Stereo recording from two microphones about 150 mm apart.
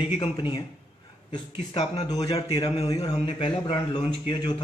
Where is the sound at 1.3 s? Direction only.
45° left (ahead or behind).